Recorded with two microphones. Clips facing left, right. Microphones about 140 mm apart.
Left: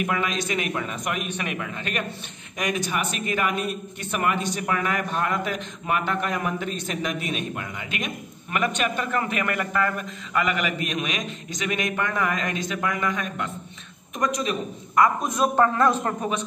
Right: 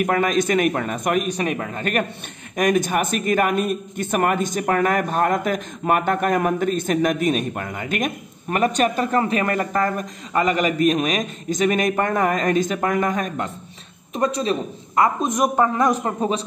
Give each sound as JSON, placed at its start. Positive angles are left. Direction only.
{"t": 0.0, "sound": "a man's voice", "side_deg": -50}
{"t": 14.1, "sound": "a man's voice", "side_deg": -30}
{"t": 16.2, "sound": "a man's voice", "side_deg": -30}